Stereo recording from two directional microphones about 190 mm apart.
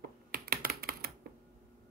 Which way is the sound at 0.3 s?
50° right (ahead or behind).